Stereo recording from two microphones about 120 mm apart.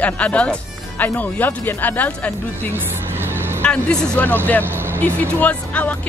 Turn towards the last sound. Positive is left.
turn(degrees=10)  # may be behind; listen again after turning